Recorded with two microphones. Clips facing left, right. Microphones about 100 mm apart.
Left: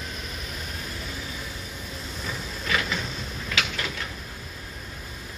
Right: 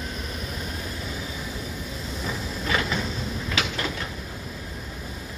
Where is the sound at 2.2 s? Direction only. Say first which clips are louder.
Right 4 dB; 25° right (ahead or behind).